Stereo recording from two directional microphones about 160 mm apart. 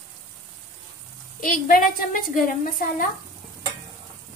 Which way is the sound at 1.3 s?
60° left (ahead or behind).